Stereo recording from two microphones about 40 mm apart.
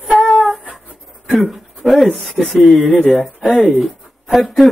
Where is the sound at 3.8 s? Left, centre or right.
Centre.